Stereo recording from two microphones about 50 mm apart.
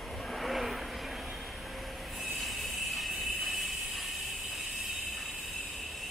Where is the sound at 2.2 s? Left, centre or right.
Centre.